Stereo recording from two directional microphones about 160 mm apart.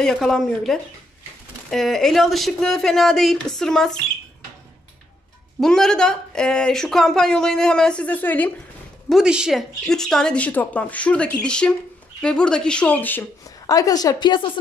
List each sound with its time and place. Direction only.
0.0 s speech: 5° left (ahead or behind)
5.6 s speech: 5° left (ahead or behind)
9.1 s speech: 5° right (ahead or behind); by 13.2 s 10° left (ahead or behind)
13.7 s a woman's voice: 20° left (ahead or behind)